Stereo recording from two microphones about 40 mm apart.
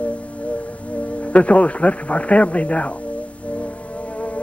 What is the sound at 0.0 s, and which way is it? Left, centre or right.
Music, left.